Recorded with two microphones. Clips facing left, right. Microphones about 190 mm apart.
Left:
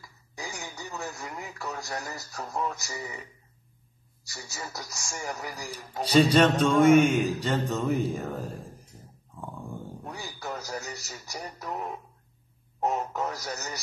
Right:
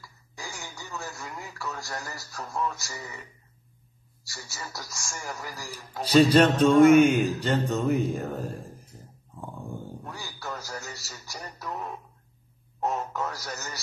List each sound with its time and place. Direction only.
0.4 s radio: 20° left (ahead or behind)
1.6 s speech: 20° left (ahead or behind)
4.3 s speech: 20° left (ahead or behind)
5.8 s mantra: centre (ahead or behind)
8.9 s dog: centre (ahead or behind)
10.0 s a sound: 20° left (ahead or behind)
10.5 s speech: 20° left (ahead or behind)